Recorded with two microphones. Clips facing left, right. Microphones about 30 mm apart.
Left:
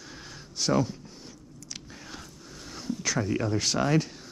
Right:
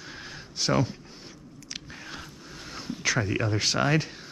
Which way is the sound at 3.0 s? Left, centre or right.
Right.